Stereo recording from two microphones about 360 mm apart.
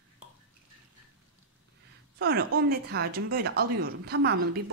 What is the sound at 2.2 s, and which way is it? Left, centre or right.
A woman's voice, right.